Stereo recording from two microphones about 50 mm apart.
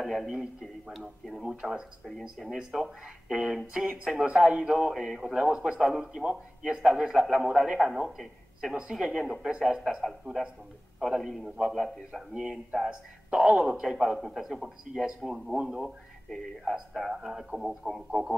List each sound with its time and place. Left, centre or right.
0.0 s speech: centre
4.9 s speech: centre
5.3 s speech: centre
16.3 s speech: centre
16.6 s speech: centre